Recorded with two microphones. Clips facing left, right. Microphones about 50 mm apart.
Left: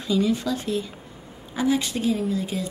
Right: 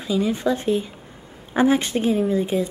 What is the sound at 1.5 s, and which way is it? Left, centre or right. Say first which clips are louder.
Speech: right 5 dB; right.